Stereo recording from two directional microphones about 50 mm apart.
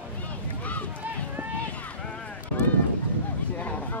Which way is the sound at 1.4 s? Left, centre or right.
Right.